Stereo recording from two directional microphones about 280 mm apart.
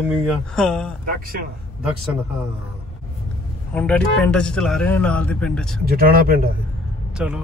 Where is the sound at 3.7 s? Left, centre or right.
Centre.